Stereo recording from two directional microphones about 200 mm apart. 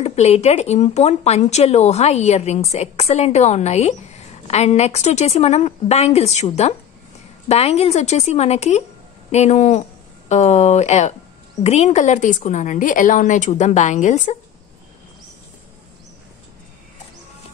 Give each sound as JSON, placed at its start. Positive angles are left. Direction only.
{"t": 0.0, "sound": "speech", "side_deg": 30}